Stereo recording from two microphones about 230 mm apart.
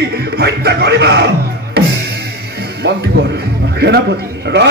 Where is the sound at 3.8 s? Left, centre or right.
Right.